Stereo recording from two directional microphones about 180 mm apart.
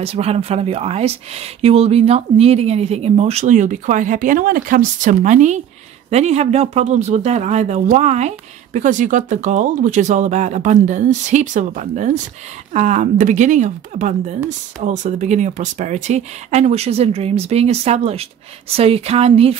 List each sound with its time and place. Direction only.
0.0 s speech: 35° right (ahead or behind)